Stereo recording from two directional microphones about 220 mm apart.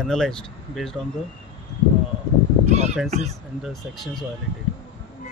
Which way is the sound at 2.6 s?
30° right (ahead or behind).